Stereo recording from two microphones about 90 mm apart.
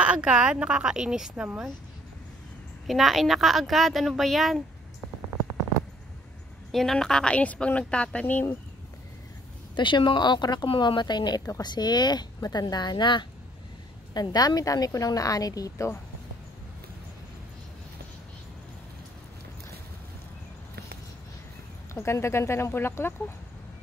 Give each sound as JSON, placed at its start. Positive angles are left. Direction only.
{"t": 0.0, "sound": "speech", "side_deg": -10}
{"t": 2.9, "sound": "a woman's voice", "side_deg": 0}
{"t": 6.7, "sound": "speech", "side_deg": 5}
{"t": 9.8, "sound": "speech", "side_deg": 60}
{"t": 10.7, "sound": "a woman's voice", "side_deg": 65}
{"t": 14.1, "sound": "a woman's voice", "side_deg": 50}
{"t": 21.9, "sound": "speech", "side_deg": 30}